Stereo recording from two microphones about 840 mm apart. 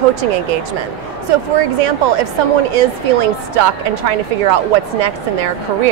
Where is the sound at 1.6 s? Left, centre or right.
Right.